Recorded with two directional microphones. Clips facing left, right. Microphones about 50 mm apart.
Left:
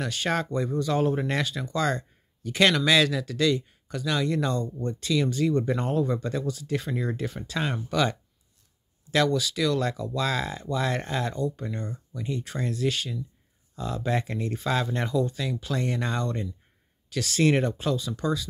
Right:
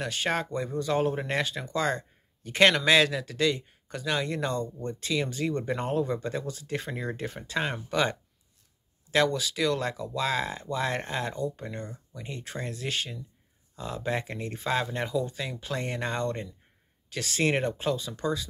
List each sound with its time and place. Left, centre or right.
0.0 s speech: right